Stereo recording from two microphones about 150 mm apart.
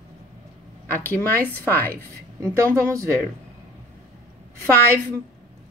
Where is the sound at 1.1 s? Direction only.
15° left (ahead or behind).